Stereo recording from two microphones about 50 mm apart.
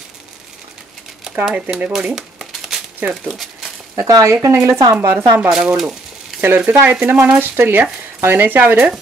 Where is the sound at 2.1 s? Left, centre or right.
Centre.